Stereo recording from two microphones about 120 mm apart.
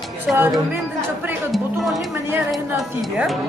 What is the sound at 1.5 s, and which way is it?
Speech, centre (ahead or behind).